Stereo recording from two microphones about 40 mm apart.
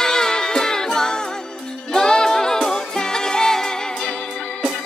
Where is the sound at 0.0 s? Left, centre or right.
Centre.